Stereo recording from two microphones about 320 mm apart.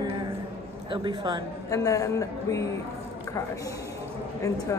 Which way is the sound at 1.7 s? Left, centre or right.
Centre.